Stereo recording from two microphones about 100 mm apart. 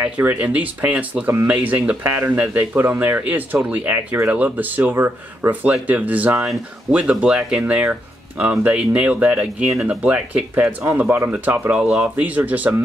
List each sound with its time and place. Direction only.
0.0 s speech: 15° right (ahead or behind)
11.7 s speech: 5° right (ahead or behind)
12.2 s speech: 15° right (ahead or behind)